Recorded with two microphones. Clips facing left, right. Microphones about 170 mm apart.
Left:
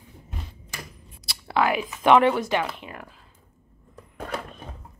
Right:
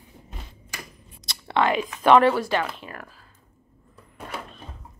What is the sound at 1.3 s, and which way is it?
Speech, 5° left (ahead or behind).